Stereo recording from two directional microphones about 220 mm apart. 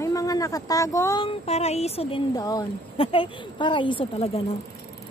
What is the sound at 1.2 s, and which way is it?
Speech, 30° left (ahead or behind).